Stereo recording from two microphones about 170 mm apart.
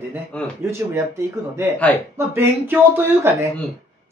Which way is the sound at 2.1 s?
15° right (ahead or behind).